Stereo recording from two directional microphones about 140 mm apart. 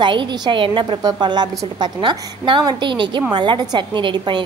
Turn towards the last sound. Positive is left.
turn(degrees=-35)  # may be behind; listen again after turning